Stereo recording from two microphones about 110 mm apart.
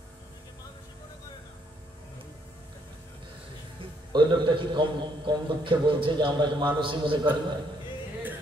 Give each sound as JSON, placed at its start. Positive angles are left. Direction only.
{"t": 4.1, "sound": "a man's voice", "side_deg": -45}